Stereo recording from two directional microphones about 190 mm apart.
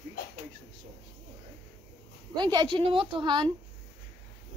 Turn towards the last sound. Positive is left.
turn(degrees=-25)  # may be behind; listen again after turning